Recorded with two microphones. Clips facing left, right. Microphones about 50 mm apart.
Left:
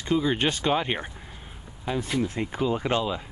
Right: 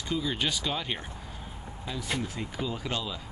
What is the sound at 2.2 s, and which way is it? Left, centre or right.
Speech, left.